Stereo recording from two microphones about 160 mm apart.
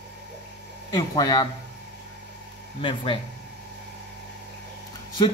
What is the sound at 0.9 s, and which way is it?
Speech, 25° left (ahead or behind).